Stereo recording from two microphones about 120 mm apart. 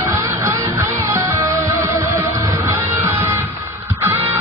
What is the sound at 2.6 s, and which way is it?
Music, 25° right (ahead or behind).